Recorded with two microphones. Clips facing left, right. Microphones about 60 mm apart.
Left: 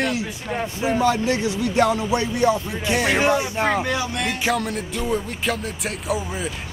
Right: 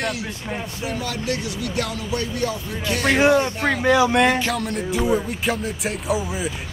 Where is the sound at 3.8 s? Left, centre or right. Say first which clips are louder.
Right 8 dB; right.